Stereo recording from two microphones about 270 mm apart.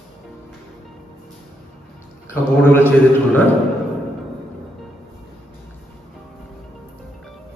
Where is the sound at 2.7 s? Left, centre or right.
Centre.